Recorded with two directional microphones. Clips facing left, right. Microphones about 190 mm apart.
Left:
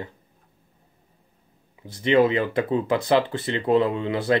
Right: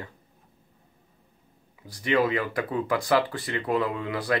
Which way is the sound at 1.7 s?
25° left (ahead or behind).